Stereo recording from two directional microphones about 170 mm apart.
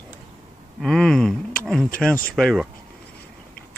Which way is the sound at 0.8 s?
5° left (ahead or behind).